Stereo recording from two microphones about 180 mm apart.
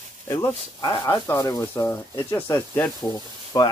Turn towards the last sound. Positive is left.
turn(degrees=20)  # may be behind; listen again after turning